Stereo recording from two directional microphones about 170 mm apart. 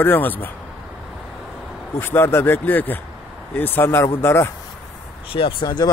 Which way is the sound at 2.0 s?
15° left (ahead or behind).